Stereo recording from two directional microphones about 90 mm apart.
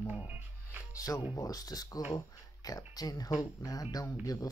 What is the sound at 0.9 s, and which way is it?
Speech, 40° left (ahead or behind).